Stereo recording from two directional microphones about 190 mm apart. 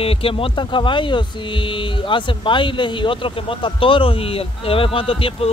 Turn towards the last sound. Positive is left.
turn(degrees=30)  # may be behind; listen again after turning